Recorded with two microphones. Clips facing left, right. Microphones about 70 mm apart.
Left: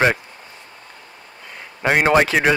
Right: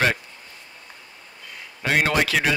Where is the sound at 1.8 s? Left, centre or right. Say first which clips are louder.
Left 6 dB; left.